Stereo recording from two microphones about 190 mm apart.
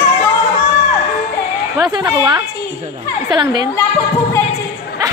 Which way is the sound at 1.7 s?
20° right (ahead or behind).